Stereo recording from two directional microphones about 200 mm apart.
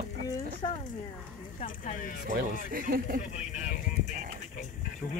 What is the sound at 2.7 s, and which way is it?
Speech, 45° right (ahead or behind).